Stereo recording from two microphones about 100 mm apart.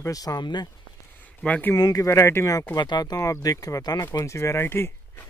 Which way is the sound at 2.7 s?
45° left (ahead or behind).